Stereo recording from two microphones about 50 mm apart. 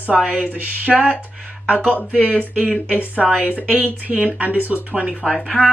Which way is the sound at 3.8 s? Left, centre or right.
Right.